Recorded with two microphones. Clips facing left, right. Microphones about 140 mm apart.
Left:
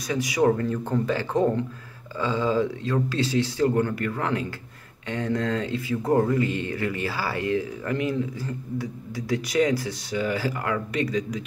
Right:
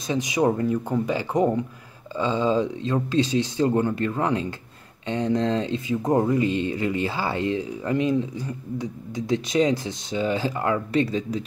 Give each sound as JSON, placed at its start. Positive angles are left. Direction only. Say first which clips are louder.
{"t": 0.1, "sound": "speech", "louder": "even", "side_deg": -20}